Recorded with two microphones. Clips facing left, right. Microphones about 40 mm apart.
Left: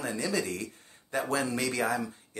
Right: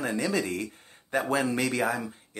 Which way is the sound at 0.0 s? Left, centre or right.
Right.